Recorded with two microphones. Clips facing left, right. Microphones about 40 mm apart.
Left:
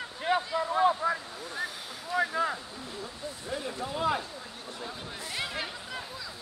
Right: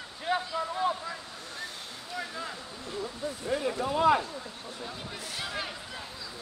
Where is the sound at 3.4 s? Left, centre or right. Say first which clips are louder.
Right 5 dB; right.